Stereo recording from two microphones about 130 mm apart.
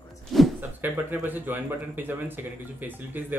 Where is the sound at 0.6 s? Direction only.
15° right (ahead or behind).